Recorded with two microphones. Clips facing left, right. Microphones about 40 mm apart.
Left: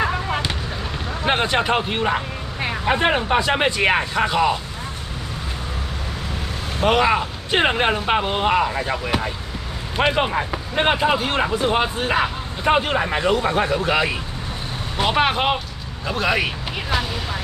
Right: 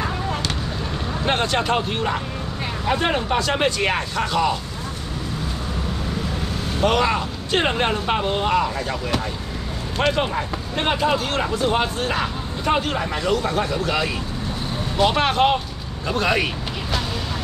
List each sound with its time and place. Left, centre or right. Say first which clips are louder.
1.2 s speech: left 2 dB; centre
6.8 s speech: left 2 dB; centre